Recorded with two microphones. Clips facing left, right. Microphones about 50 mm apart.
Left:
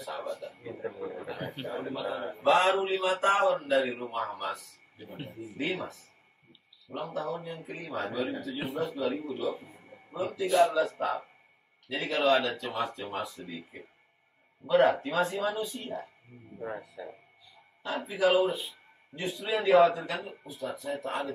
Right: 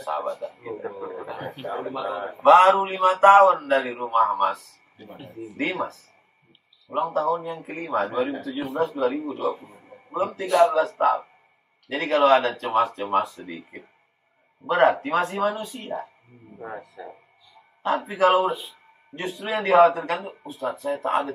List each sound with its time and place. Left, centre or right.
0.1 s a sound: right
1.2 s a sound: centre
1.7 s speech: right
2.4 s speech: right
6.9 s speech: right
9.6 s a man's voice: centre
10.1 s speech: right
17.0 s speech: centre
17.8 s speech: right
18.5 s speech: centre
19.1 s speech: right
20.2 s speech: right
20.6 s speech: right